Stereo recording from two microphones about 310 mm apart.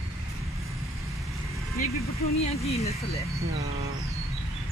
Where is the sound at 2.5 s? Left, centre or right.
Centre.